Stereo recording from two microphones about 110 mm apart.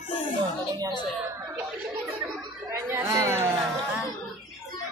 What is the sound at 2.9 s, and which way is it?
Speech, 30° right (ahead or behind).